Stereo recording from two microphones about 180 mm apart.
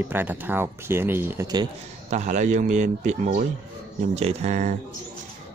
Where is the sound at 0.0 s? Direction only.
10° right (ahead or behind).